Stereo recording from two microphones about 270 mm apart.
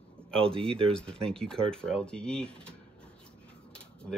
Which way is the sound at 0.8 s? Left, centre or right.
Centre.